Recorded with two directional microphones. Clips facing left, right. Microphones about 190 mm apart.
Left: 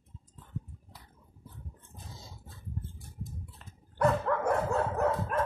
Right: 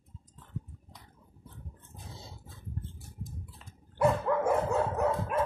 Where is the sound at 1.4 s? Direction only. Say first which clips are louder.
Even; 5° left (ahead or behind).